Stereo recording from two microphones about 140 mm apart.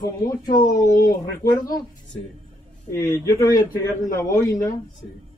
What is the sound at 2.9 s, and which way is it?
Speech, 25° left (ahead or behind).